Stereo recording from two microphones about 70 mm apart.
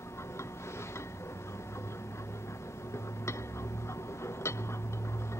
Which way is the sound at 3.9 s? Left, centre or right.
Left.